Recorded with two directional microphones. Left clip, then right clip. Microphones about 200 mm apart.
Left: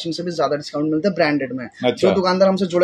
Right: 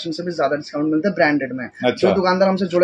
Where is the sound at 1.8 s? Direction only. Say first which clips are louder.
Even; centre (ahead or behind).